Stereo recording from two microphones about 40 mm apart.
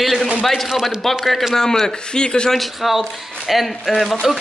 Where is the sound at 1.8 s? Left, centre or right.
Left.